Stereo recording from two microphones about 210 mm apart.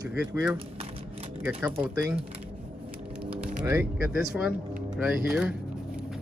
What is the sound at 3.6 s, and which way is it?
Speech, 10° right (ahead or behind).